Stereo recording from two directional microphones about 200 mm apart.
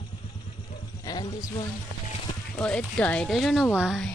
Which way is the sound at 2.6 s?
5° left (ahead or behind).